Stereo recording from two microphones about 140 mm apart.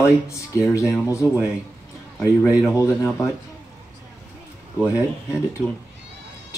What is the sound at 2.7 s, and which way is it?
Speech, 20° left (ahead or behind).